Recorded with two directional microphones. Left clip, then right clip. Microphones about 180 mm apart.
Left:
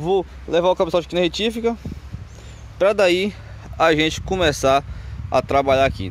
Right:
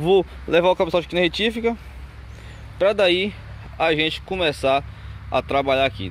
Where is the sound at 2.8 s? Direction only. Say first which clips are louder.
Left 1 dB; 15° left (ahead or behind).